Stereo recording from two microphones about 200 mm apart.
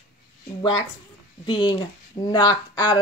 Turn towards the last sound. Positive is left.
turn(degrees=20)  # may be behind; listen again after turning